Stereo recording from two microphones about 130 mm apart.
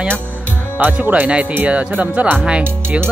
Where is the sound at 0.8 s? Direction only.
10° right (ahead or behind).